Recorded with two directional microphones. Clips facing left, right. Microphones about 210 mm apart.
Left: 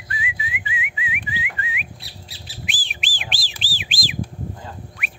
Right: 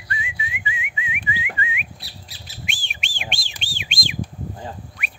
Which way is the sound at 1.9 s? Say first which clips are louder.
Left 1 dB; 25° left (ahead or behind).